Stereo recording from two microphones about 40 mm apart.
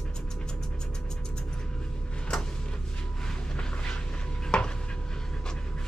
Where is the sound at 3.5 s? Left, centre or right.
Left.